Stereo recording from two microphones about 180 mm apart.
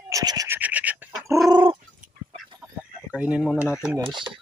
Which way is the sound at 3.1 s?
5° right (ahead or behind).